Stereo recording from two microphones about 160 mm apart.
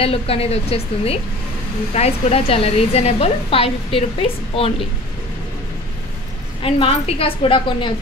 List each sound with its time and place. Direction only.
0.0 s a woman's voice: 35° left (ahead or behind)
6.6 s a woman's voice: 40° left (ahead or behind)